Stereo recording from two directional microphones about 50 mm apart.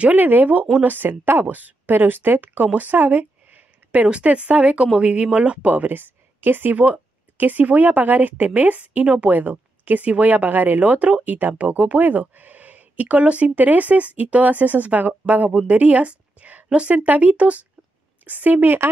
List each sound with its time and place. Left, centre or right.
0.0 s a woman's voice: right